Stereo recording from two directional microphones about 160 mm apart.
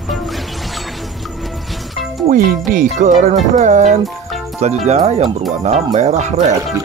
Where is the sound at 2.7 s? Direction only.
50° right (ahead or behind).